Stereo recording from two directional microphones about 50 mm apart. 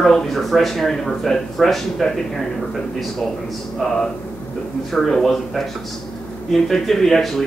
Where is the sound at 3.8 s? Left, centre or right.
Centre.